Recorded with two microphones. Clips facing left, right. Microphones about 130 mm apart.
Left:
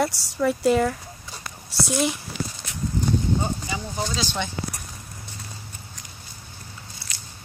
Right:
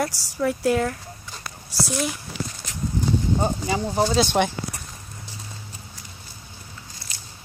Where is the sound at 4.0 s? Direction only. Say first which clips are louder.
Right 9 dB; 60° right (ahead or behind).